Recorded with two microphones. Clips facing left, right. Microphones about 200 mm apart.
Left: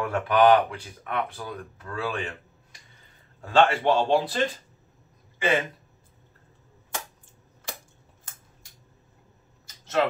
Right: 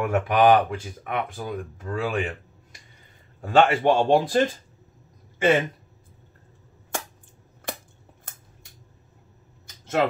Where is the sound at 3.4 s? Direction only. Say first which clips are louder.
Right 2 dB; 50° right (ahead or behind).